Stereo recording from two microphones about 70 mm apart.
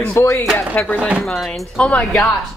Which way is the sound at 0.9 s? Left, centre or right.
Centre.